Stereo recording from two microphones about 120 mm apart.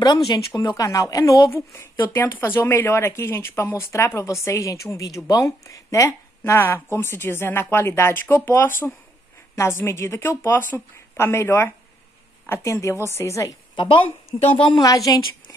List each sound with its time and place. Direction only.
0.5 s speech: 30° left (ahead or behind)
13.7 s speech: 45° left (ahead or behind)
14.6 s a woman's voice: 35° left (ahead or behind)